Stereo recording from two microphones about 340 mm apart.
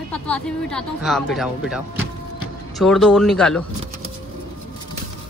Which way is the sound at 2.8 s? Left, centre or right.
Centre.